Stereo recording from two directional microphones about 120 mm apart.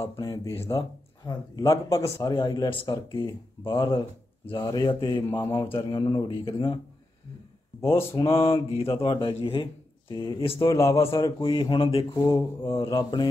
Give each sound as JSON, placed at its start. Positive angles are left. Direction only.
{"t": 0.2, "sound": "speech", "side_deg": 25}
{"t": 0.7, "sound": "speech", "side_deg": 45}
{"t": 1.7, "sound": "speech", "side_deg": 25}
{"t": 7.8, "sound": "speech", "side_deg": 20}
{"t": 8.2, "sound": "speech", "side_deg": 50}
{"t": 10.6, "sound": "speech", "side_deg": 25}
{"t": 11.3, "sound": "speech", "side_deg": 45}
{"t": 12.3, "sound": "speech", "side_deg": 35}